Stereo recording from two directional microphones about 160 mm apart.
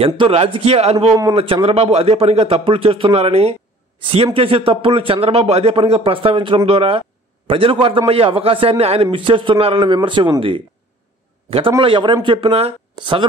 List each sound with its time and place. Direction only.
0.0 s a man's voice: 40° right (ahead or behind)
11.8 s a man's voice: 30° right (ahead or behind)